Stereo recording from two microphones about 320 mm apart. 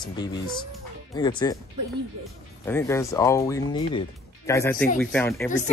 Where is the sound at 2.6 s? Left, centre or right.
Centre.